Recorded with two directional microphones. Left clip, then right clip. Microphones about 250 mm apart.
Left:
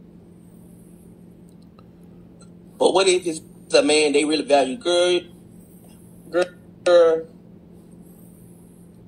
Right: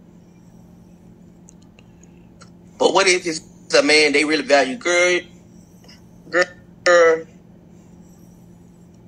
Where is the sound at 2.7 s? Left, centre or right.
Right.